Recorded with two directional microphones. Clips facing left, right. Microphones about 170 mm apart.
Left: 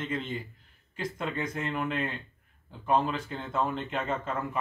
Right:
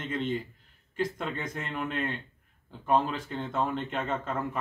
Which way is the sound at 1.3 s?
Centre (ahead or behind).